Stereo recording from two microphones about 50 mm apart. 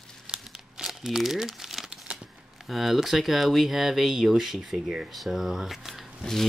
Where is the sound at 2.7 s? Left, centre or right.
Centre.